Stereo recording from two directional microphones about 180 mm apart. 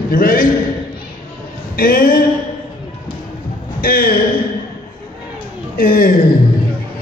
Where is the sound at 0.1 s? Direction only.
55° left (ahead or behind).